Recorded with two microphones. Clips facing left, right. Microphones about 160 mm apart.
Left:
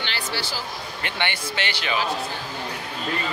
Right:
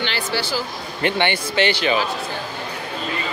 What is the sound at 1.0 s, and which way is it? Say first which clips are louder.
Speech: right 9 dB; 25° right (ahead or behind).